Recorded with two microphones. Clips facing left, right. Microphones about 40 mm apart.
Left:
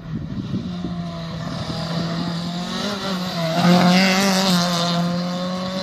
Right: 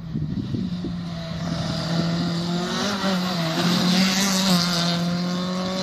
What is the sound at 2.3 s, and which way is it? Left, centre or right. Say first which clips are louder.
Vehicle: right 1 dB; left.